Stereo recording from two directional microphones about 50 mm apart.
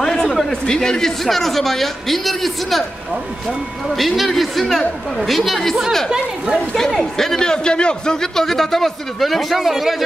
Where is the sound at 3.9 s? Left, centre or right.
Centre.